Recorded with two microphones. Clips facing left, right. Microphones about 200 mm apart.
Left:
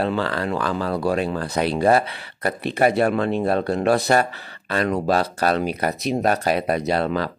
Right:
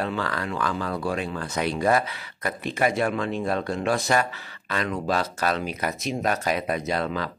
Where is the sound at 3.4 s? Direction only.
35° left (ahead or behind).